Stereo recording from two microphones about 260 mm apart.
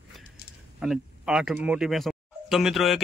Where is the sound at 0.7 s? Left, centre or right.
Centre.